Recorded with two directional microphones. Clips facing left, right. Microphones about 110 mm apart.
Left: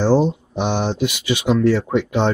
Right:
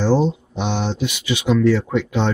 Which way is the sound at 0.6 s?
45° left (ahead or behind).